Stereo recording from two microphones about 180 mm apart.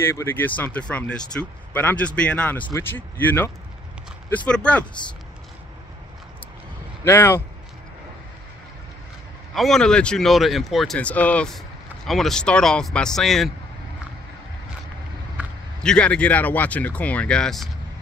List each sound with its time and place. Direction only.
0.1 s speech: 10° left (ahead or behind)
7.1 s speech: 15° left (ahead or behind)
9.5 s speech: centre (ahead or behind)
15.8 s speech: 5° left (ahead or behind)